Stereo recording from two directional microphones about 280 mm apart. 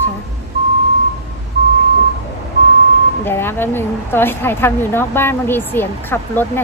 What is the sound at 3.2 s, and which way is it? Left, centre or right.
Speech, centre.